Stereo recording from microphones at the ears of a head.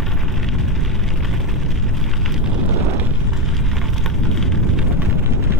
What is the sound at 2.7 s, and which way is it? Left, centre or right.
Eruption, right.